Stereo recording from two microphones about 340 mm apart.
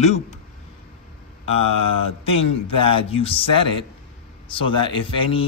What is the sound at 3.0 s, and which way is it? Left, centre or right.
Speech, centre.